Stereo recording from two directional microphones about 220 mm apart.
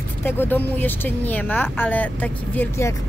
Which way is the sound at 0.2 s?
10° left (ahead or behind).